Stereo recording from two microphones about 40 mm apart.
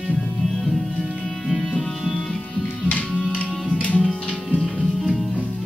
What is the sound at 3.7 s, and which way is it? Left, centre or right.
Music, left.